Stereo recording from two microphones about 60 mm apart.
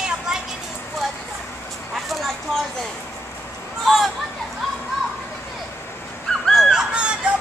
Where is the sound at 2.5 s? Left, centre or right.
Centre.